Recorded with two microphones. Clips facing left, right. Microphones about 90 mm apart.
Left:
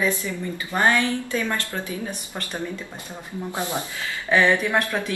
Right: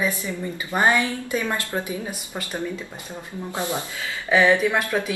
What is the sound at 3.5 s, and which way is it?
Speech, 20° left (ahead or behind).